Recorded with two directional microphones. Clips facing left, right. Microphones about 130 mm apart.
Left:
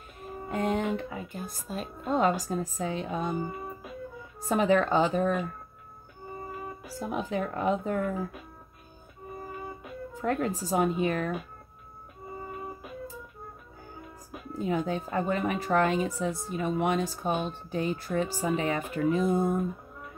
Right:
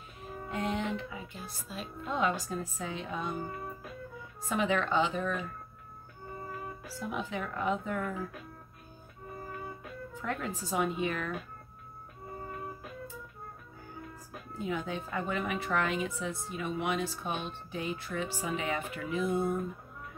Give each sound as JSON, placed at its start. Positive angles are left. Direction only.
{"t": 0.5, "sound": "speech", "side_deg": 45}
{"t": 3.4, "sound": "music", "side_deg": 15}
{"t": 4.5, "sound": "speech", "side_deg": 40}
{"t": 7.0, "sound": "speech", "side_deg": 40}
{"t": 10.1, "sound": "speech", "side_deg": 40}
{"t": 14.7, "sound": "speech", "side_deg": 40}